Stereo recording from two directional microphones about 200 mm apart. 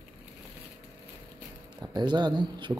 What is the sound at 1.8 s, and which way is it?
Speech, 20° right (ahead or behind).